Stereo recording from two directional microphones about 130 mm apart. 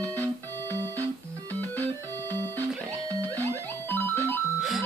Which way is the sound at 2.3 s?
15° left (ahead or behind).